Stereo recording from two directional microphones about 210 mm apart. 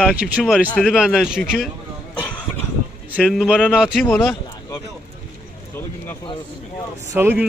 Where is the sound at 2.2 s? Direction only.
5° left (ahead or behind).